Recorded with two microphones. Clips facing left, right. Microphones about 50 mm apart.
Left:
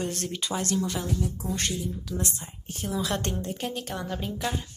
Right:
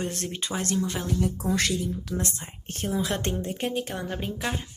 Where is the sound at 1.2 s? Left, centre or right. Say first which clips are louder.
Right 5 dB; right.